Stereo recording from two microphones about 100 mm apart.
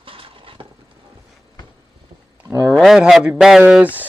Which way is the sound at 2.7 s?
Centre (ahead or behind).